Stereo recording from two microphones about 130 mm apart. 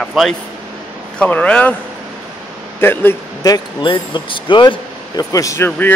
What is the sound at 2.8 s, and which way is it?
Speech, 15° left (ahead or behind).